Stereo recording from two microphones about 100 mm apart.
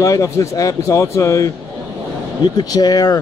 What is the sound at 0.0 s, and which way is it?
Speech, 35° left (ahead or behind).